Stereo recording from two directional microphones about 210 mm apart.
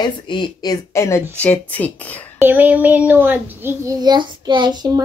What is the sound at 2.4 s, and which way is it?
A child's voice, 10° right (ahead or behind).